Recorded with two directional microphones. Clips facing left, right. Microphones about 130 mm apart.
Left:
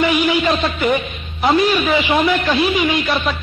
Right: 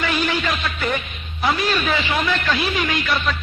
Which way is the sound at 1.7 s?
10° left (ahead or behind).